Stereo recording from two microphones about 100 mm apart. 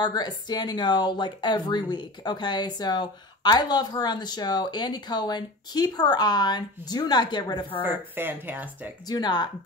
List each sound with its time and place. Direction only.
0.0 s speech: 45° left (ahead or behind)
7.8 s speech: 20° right (ahead or behind)
9.0 s speech: 45° left (ahead or behind)